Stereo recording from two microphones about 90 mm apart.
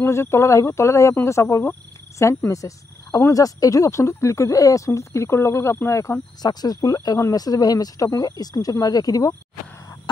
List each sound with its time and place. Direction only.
0.0 s speech: 30° left (ahead or behind)
6.4 s speech: 45° left (ahead or behind)